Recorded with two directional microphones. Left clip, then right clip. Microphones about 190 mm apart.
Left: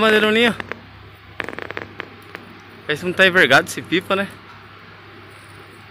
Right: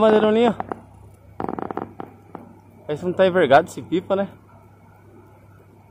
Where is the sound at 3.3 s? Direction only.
30° left (ahead or behind).